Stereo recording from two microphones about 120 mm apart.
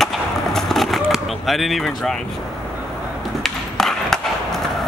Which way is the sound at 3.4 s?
5° left (ahead or behind).